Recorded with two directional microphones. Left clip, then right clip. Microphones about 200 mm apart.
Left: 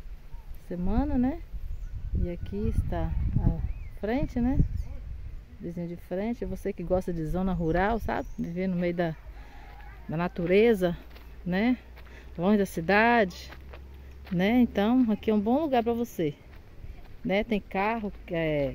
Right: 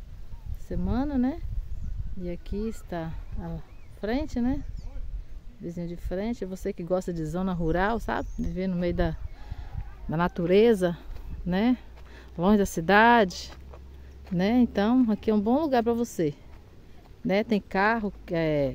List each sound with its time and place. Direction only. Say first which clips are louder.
0.7 s speech: even; 5° right (ahead or behind)
5.7 s speech: even; centre (ahead or behind); by 18.7 s 15° right (ahead or behind)